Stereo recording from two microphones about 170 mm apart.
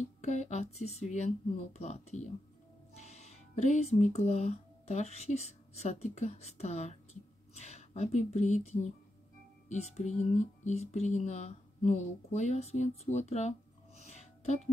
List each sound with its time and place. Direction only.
0.2 s speech: 45° left (ahead or behind)